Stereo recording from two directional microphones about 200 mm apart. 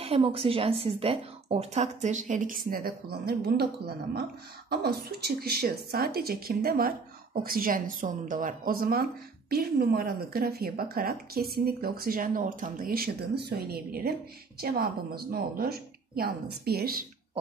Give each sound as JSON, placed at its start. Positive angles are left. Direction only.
{"t": 0.0, "sound": "speech", "side_deg": -30}